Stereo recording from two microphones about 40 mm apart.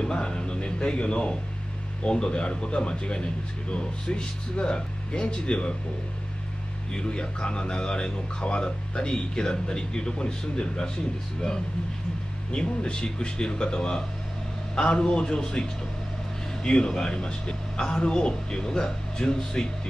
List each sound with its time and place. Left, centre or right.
0.0 s speech: left
6.9 s speech: left
12.5 s speech: left
16.6 s speech: left